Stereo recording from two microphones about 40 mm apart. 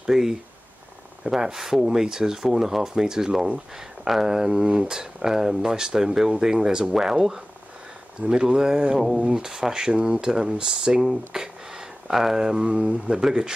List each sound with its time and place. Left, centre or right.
0.0 s speech: centre
8.2 s speech: right
11.0 s speech: centre